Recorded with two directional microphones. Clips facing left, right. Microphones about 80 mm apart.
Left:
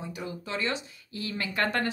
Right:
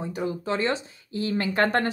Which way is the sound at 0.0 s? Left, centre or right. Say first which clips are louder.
Right 8 dB; right.